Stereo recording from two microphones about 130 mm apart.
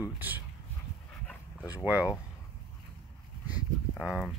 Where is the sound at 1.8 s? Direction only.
15° right (ahead or behind).